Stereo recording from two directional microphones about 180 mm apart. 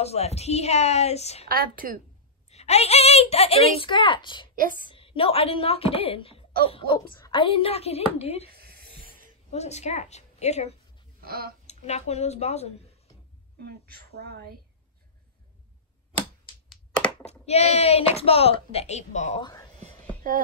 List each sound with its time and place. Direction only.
0.0 s speech: 35° left (ahead or behind)
1.5 s a woman's voice: 50° right (ahead or behind)
2.5 s speech: 35° left (ahead or behind)
6.6 s a sound: 30° left (ahead or behind)
7.2 s speech: 25° left (ahead or behind)
8.5 s a sound: 60° right (ahead or behind)
9.5 s speech: 40° left (ahead or behind)
11.1 s a sound: 55° right (ahead or behind)
11.6 s speech: 40° left (ahead or behind)
13.7 s speech: 60° right (ahead or behind)
16.6 s computer keyboard: 5° left (ahead or behind)
17.2 s speech: 35° left (ahead or behind)
19.4 s speech: 20° left (ahead or behind)